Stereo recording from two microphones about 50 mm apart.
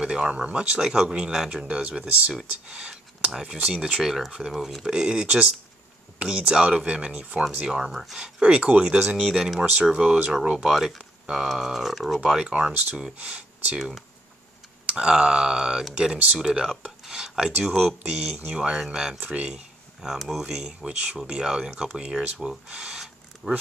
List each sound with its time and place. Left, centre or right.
0.0 s speech: centre
1.8 s speech: right
5.2 s speech: right; by 8.3 s centre
8.4 s speech: right
9.2 s speech: centre
9.6 s speech: right
10.6 s speech: centre; by 13.7 s right
13.7 s speech: centre
19.1 s speech: right
22.7 s a sound: centre